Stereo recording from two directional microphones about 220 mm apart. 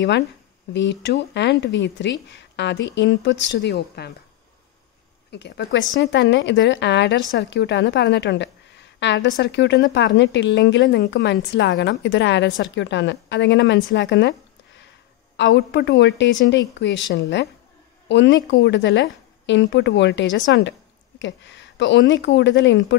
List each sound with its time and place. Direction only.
0.7 s a woman's voice: 55° left (ahead or behind)
5.3 s a woman's voice: 50° left (ahead or behind)